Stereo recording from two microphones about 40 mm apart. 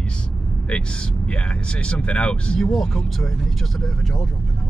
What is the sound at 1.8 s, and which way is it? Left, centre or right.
Speech, left.